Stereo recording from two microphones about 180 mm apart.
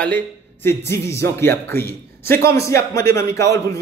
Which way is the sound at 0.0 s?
10° left (ahead or behind).